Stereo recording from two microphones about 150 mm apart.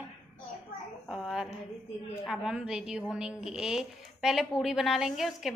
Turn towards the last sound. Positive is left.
turn(degrees=0)  # may be behind; listen again after turning